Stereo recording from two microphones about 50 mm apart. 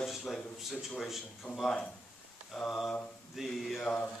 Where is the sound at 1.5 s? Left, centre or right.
Left.